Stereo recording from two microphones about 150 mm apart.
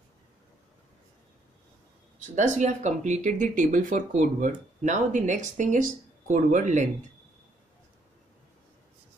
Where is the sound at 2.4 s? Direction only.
55° right (ahead or behind).